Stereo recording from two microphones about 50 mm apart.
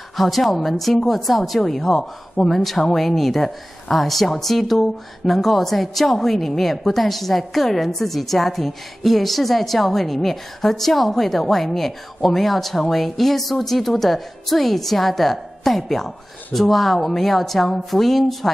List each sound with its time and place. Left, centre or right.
0.1 s a woman's voice: centre